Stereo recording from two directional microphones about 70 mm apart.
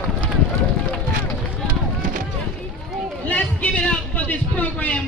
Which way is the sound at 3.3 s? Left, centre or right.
Left.